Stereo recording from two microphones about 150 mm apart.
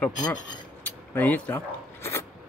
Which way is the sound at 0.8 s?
10° left (ahead or behind).